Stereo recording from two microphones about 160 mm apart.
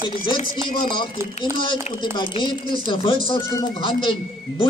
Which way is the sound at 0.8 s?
30° left (ahead or behind).